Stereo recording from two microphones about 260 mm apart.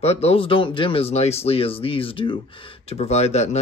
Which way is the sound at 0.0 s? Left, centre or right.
Left.